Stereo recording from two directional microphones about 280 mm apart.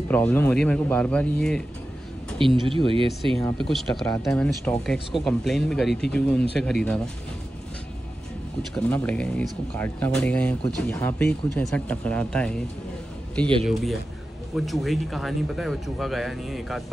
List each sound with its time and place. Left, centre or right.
0.1 s speech: centre
2.6 s speech: centre
3.3 s speech: centre
8.7 s speech: centre